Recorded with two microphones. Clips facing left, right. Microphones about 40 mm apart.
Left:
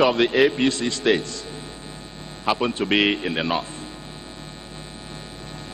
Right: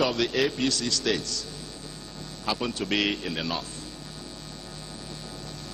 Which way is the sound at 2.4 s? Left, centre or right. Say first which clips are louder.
Left 7 dB; left.